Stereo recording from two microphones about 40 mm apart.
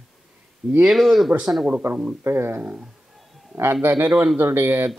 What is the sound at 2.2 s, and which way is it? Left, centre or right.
Speech, right.